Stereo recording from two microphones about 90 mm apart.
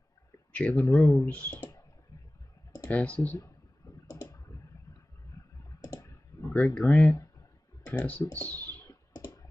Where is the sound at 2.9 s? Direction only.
15° left (ahead or behind).